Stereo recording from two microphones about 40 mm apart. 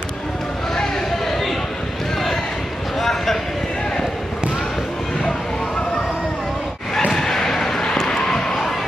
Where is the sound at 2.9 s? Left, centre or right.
Centre.